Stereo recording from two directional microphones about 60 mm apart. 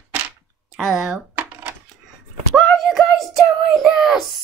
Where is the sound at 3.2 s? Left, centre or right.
Centre.